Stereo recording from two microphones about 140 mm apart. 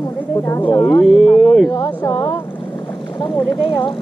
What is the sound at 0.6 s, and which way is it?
Speech, 40° left (ahead or behind).